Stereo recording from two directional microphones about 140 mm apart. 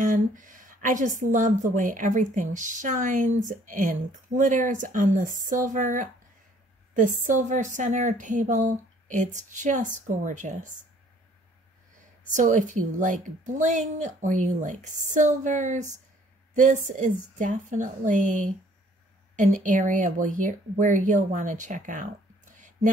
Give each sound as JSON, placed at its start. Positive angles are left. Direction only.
{"t": 0.0, "sound": "a sound", "side_deg": -70}
{"t": 1.2, "sound": "speech", "side_deg": -65}
{"t": 12.3, "sound": "speech", "side_deg": -65}